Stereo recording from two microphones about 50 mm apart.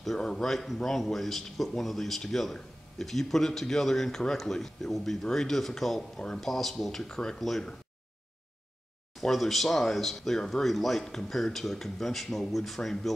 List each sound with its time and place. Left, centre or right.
0.2 s speech: centre
6.1 s speech: centre
6.4 s speech: centre
9.2 s speech: centre